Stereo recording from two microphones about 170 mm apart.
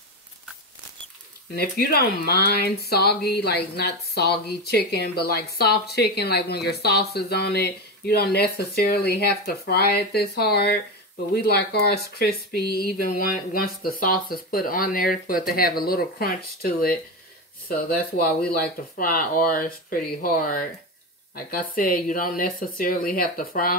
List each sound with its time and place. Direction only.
1.5 s speech: 65° left (ahead or behind)